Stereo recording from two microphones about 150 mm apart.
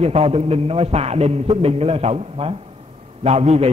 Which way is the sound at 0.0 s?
45° right (ahead or behind).